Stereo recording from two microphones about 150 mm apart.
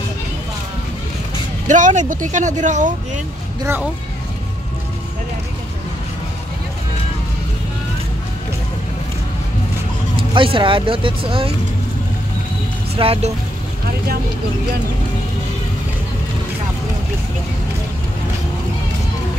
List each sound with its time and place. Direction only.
1.7 s speech: 55° right (ahead or behind)
10.1 s speech: 35° right (ahead or behind)
12.9 s speech: 40° right (ahead or behind)